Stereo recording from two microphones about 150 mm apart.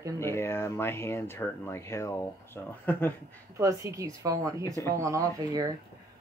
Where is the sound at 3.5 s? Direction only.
20° right (ahead or behind).